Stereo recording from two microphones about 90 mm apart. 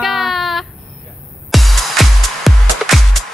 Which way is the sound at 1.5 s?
Centre (ahead or behind).